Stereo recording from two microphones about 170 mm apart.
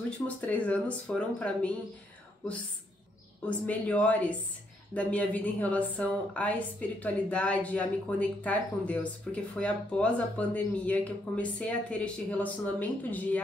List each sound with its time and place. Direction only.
0.4 s speech: 10° left (ahead or behind)
3.4 s speech: 10° left (ahead or behind)